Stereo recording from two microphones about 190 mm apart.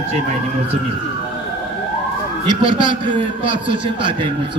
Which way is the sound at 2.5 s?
25° right (ahead or behind).